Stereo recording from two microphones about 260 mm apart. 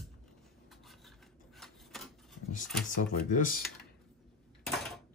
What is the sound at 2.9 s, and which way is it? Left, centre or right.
Speech, left.